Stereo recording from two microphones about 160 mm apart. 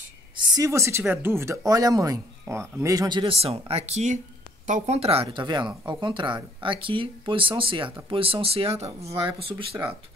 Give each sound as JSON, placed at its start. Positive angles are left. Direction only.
{"t": 0.5, "sound": "speech", "side_deg": -20}
{"t": 8.8, "sound": "speech", "side_deg": -20}
{"t": 9.4, "sound": "speech", "side_deg": -35}